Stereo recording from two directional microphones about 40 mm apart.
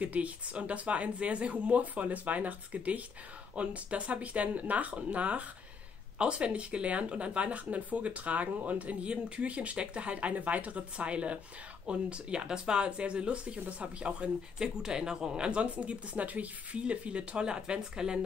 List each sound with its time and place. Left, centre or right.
0.0 s speech: right
9.0 s speech: right
14.6 s speech: centre
15.6 s speech: right; by 18.2 s centre